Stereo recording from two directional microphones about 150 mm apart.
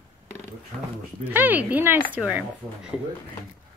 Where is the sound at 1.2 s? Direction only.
10° right (ahead or behind).